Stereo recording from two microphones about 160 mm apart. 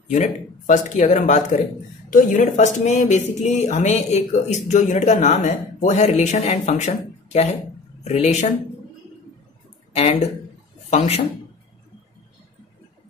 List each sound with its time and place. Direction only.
0.1 s speech: 50° left (ahead or behind)
9.9 s a man's voice: 40° left (ahead or behind)